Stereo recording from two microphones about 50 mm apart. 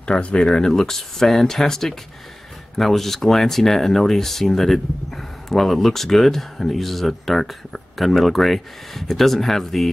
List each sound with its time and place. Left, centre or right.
0.0 s speech: left
0.5 s speech: centre